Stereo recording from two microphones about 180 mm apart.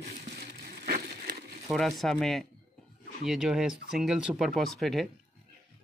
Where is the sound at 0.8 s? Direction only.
55° right (ahead or behind).